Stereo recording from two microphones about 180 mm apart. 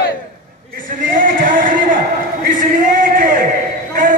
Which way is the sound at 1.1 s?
50° right (ahead or behind).